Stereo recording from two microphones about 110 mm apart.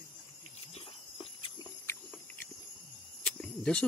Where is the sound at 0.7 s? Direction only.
60° left (ahead or behind).